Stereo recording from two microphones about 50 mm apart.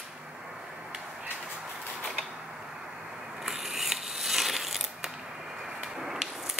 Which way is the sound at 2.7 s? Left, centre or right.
Centre.